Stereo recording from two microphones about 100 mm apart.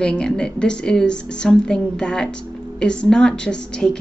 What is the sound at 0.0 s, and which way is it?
A woman's voice, 10° left (ahead or behind).